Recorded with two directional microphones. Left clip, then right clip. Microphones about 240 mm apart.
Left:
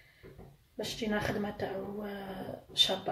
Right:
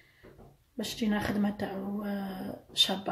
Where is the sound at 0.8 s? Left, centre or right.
Right.